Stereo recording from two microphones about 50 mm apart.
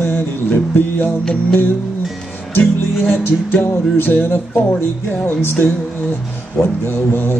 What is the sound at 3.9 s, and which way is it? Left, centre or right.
Music, left.